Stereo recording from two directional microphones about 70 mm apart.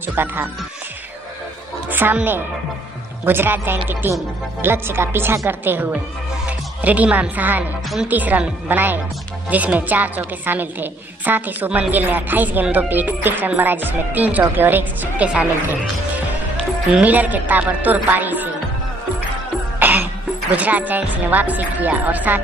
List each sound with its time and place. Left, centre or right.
0.0 s speech: right
1.9 s music: right
3.3 s a woman's voice: right
17.0 s a woman's voice: right
19.8 s music: right
20.5 s a woman's voice: right